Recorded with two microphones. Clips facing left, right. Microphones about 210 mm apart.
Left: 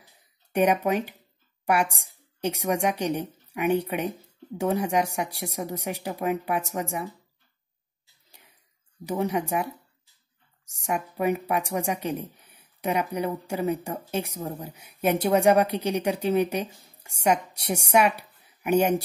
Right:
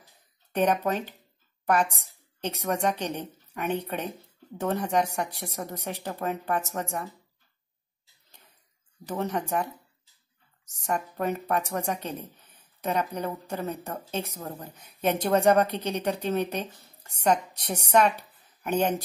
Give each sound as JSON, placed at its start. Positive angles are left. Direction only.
{"t": 0.0, "sound": "a sound", "side_deg": 10}
{"t": 1.7, "sound": "speech", "side_deg": 10}
{"t": 9.0, "sound": "a woman's voice", "side_deg": 10}